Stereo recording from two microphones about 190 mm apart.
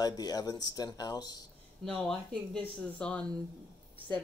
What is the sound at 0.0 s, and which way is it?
Speech, 20° left (ahead or behind).